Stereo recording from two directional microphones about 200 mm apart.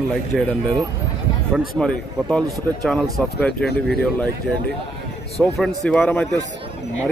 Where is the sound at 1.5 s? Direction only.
5° left (ahead or behind).